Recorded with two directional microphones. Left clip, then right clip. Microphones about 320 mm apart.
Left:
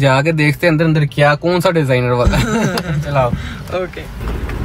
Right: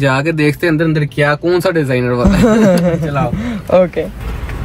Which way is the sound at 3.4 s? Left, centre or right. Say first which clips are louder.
Right 10 dB; centre.